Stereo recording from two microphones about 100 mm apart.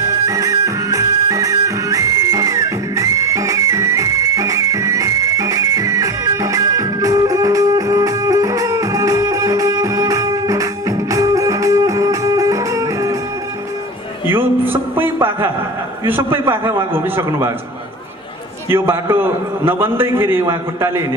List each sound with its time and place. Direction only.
0.3 s music: 35° right (ahead or behind)
14.3 s a sound: 20° right (ahead or behind)
16.1 s a man's voice: 20° right (ahead or behind)
18.7 s a man's voice: 25° right (ahead or behind)